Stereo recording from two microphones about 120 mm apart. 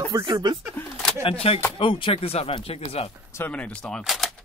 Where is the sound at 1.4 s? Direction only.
60° left (ahead or behind).